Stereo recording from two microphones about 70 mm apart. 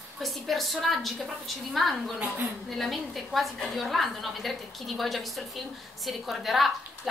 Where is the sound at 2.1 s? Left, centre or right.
Right.